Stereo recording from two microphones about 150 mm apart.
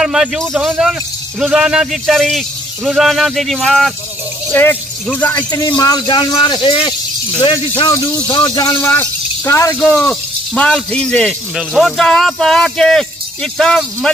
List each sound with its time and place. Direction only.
0.0 s a man's voice: 5° right (ahead or behind)
4.5 s speech: 15° left (ahead or behind)
5.5 s a man's voice: 25° left (ahead or behind)
9.8 s speech: 10° left (ahead or behind)